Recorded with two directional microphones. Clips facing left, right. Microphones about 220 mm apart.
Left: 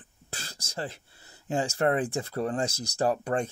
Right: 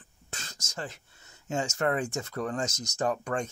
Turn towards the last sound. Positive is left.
turn(degrees=35)  # may be behind; listen again after turning